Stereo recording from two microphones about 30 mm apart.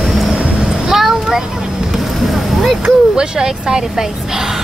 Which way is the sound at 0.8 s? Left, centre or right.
Centre.